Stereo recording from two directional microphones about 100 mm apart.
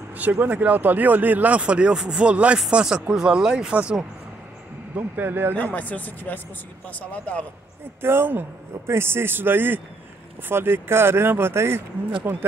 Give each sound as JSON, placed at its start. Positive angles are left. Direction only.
{"t": 0.2, "sound": "speech", "side_deg": -15}
{"t": 4.9, "sound": "speech", "side_deg": -20}
{"t": 5.5, "sound": "speech", "side_deg": 15}
{"t": 8.0, "sound": "speech", "side_deg": -25}